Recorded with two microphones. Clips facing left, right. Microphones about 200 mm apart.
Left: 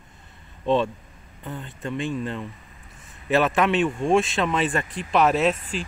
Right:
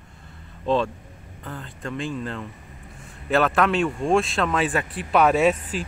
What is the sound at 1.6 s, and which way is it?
Speech, centre (ahead or behind).